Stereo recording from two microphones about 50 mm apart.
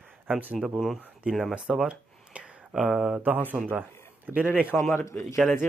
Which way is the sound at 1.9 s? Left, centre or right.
Right.